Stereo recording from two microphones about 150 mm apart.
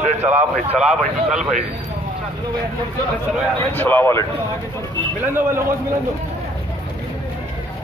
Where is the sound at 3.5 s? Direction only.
15° left (ahead or behind).